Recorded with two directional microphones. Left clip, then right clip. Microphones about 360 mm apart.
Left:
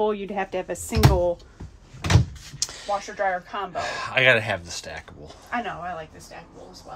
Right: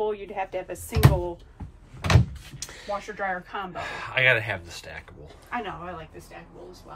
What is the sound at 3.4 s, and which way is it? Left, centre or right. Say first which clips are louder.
Speech: left 4 dB; centre.